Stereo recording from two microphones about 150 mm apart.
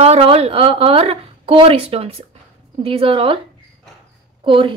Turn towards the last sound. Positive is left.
turn(degrees=-35)  # may be behind; listen again after turning